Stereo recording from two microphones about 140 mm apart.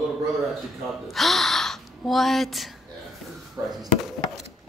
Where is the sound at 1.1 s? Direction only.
Centre (ahead or behind).